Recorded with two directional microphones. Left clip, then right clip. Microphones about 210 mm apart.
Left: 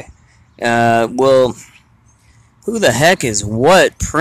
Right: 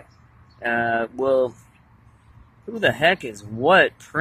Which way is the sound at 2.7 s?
30° left (ahead or behind).